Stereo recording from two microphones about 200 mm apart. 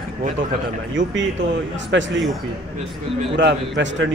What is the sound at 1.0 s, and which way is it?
A man's voice, 70° right (ahead or behind).